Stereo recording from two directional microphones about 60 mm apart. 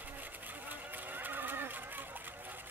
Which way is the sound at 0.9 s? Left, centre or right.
Right.